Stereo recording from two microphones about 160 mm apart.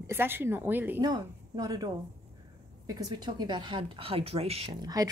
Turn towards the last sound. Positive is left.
turn(degrees=-20)  # may be behind; listen again after turning